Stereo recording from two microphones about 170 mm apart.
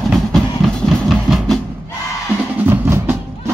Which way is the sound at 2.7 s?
15° right (ahead or behind).